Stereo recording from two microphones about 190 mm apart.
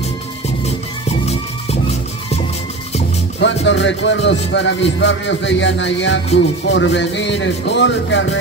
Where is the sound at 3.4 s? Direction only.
70° left (ahead or behind).